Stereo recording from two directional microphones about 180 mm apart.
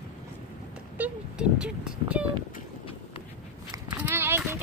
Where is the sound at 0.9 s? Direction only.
5° right (ahead or behind).